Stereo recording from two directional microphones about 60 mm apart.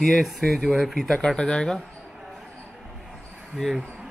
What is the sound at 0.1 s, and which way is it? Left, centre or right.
Speech, centre.